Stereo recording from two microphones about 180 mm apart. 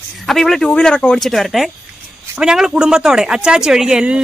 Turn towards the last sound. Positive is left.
turn(degrees=-5)  # may be behind; listen again after turning